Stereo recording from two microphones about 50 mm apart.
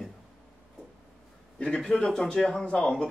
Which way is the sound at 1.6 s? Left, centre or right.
Centre.